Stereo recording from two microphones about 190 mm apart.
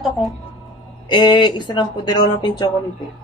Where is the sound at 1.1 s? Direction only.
25° left (ahead or behind).